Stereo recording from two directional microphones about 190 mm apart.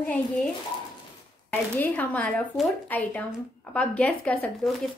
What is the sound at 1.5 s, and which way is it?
Speech, 10° left (ahead or behind).